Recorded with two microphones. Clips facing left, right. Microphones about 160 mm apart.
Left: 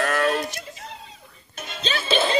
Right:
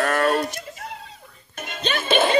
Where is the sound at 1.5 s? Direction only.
50° right (ahead or behind).